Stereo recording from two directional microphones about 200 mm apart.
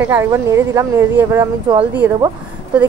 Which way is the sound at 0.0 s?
10° right (ahead or behind).